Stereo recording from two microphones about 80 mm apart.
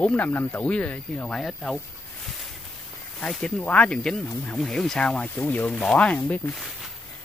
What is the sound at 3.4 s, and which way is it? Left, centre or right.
Speech, centre.